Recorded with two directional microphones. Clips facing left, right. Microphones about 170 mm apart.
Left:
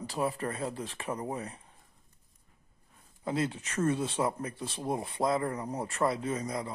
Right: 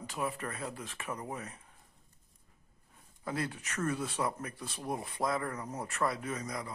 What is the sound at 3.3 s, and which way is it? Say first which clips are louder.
Speech: left 5 dB; 25° left (ahead or behind).